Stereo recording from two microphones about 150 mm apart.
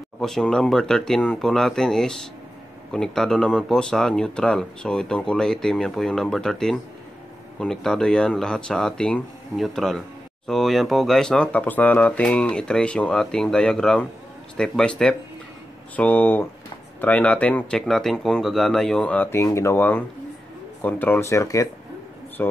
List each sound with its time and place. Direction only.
0.2 s speech: 5° left (ahead or behind)